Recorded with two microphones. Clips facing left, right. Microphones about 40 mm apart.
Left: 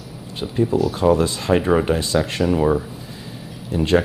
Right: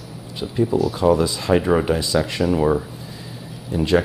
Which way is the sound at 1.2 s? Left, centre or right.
Centre.